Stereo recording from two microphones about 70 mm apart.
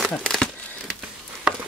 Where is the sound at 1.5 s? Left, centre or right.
Centre.